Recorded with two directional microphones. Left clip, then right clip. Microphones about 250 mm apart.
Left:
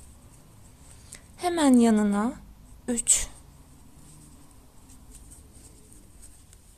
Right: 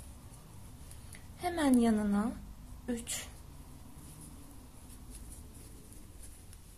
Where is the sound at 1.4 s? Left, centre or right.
Left.